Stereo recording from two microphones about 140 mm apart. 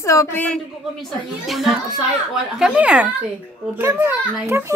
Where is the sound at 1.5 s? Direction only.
Centre (ahead or behind).